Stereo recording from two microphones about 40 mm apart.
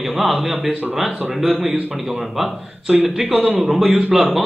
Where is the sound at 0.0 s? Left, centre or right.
Centre.